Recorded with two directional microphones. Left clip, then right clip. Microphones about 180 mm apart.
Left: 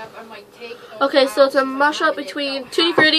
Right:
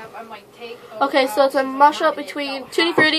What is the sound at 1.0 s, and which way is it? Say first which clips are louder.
A woman's voice: left 2 dB; 15° right (ahead or behind).